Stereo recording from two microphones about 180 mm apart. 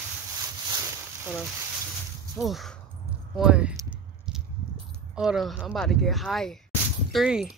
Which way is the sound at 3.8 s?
5° right (ahead or behind).